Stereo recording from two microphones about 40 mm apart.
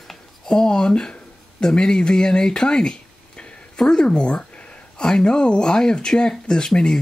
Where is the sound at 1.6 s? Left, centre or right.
Centre.